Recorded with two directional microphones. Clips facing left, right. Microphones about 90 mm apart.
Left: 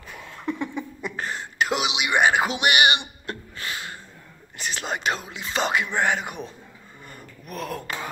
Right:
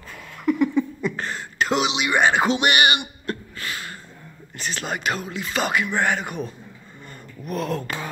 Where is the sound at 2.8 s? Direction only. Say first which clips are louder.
Right 1 dB; 20° left (ahead or behind).